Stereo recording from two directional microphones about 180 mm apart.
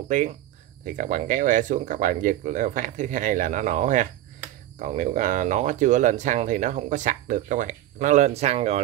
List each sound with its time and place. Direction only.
0.1 s speech: 45° right (ahead or behind)